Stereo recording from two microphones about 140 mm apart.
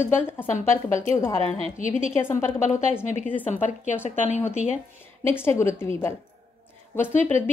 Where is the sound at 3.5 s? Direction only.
60° left (ahead or behind).